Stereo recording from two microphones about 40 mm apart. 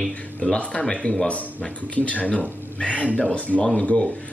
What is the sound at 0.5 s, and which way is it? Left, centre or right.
Speech, left.